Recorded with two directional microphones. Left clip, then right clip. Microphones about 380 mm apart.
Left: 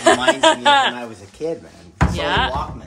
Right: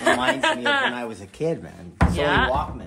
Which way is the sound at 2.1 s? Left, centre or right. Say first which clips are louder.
Left 1 dB; centre.